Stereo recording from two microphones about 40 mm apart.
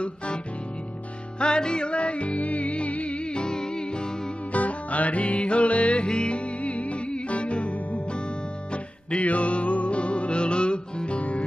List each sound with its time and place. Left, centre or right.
1.4 s music: left
4.5 s music: left